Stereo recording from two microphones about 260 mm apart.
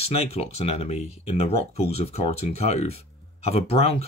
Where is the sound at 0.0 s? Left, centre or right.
Left.